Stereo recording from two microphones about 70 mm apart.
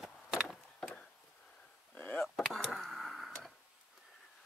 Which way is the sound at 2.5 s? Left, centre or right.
Centre.